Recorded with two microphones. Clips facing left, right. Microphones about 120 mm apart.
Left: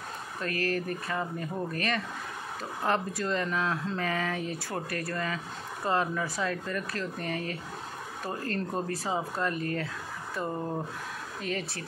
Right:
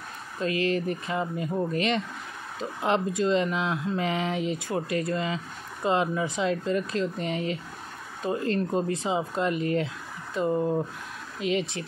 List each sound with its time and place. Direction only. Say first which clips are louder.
0.4 s speech: right 5 dB; 20° right (ahead or behind)